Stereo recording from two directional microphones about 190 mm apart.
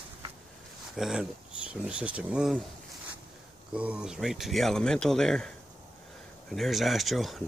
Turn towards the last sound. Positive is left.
turn(degrees=0)  # may be behind; listen again after turning